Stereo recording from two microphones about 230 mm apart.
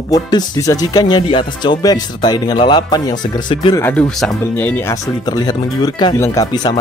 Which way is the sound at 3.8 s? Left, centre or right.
Centre.